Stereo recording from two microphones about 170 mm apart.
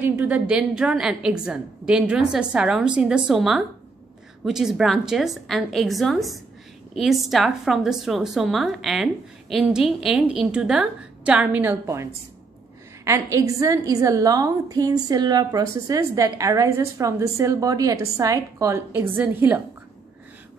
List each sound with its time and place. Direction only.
0.0 s a woman's voice: 10° right (ahead or behind)